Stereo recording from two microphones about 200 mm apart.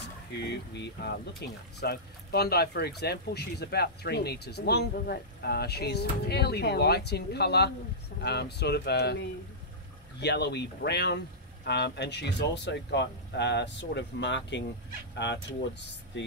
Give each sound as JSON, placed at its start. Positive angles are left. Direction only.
{"t": 0.4, "sound": "speech", "side_deg": 60}
{"t": 10.2, "sound": "speech", "side_deg": 55}
{"t": 16.1, "sound": "speech", "side_deg": 65}